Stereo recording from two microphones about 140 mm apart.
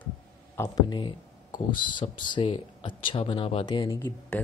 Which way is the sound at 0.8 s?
30° left (ahead or behind).